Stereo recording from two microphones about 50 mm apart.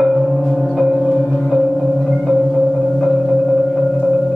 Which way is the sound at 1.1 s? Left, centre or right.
Centre.